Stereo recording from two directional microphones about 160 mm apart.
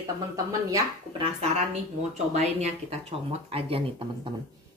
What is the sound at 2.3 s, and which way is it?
Speech, 45° right (ahead or behind).